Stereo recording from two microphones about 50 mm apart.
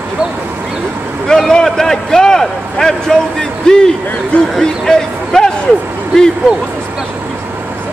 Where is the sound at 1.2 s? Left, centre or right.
Centre.